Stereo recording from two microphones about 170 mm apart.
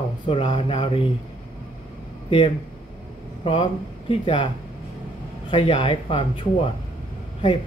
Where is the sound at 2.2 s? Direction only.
30° left (ahead or behind).